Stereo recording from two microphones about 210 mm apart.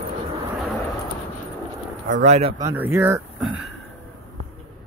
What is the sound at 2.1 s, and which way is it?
Speech, 35° right (ahead or behind).